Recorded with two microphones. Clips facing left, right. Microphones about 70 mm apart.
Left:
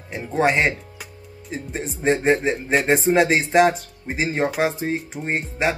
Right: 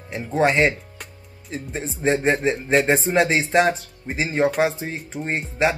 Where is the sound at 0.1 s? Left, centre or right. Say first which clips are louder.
Even; centre.